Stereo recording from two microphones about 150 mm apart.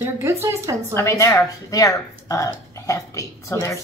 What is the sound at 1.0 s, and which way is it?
A woman's voice, 20° left (ahead or behind).